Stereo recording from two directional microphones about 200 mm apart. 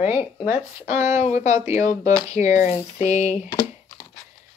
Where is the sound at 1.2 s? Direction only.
35° left (ahead or behind).